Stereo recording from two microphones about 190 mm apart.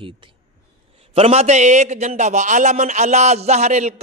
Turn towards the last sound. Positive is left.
turn(degrees=-35)  # may be behind; listen again after turning